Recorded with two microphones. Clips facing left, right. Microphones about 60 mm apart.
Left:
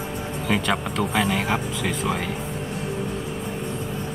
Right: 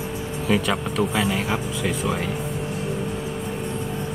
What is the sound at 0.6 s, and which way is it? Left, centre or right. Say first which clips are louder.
Speech: right 1 dB; centre.